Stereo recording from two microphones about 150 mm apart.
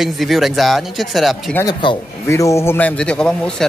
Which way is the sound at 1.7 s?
30° left (ahead or behind).